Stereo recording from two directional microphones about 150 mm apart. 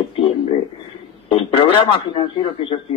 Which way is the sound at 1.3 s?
35° left (ahead or behind).